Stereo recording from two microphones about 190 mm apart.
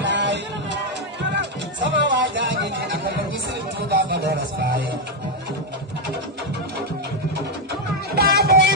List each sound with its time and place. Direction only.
0.0 s music: 70° right (ahead or behind)
3.9 s a sound: 50° right (ahead or behind)
8.1 s music: 55° right (ahead or behind)